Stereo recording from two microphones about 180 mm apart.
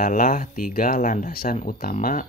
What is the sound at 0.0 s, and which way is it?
Speech, 50° left (ahead or behind).